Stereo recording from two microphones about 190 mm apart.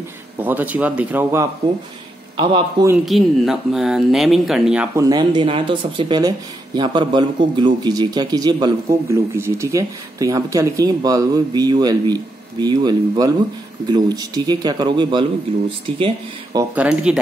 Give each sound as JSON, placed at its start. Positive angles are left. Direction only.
{"t": 0.4, "sound": "a man's voice", "side_deg": -10}
{"t": 2.3, "sound": "speech", "side_deg": -25}
{"t": 3.1, "sound": "speech", "side_deg": 0}
{"t": 4.9, "sound": "speech", "side_deg": -20}
{"t": 16.7, "sound": "speech", "side_deg": -5}